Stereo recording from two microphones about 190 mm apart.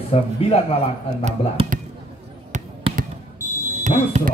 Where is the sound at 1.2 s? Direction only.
30° right (ahead or behind).